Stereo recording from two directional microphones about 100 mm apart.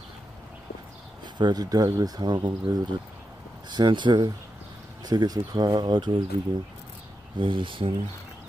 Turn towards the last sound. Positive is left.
turn(degrees=-60)  # may be behind; listen again after turning